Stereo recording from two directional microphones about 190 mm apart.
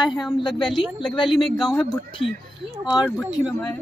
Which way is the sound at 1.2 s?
25° left (ahead or behind).